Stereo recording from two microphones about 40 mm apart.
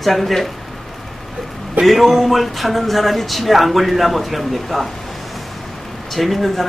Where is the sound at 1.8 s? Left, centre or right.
Centre.